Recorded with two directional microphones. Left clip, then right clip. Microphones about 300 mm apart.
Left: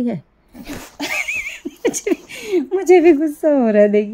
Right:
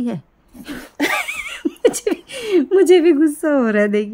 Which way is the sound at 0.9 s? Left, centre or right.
Right.